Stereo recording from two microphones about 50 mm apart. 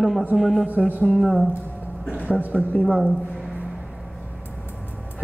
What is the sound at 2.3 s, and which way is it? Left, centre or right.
Speech, right.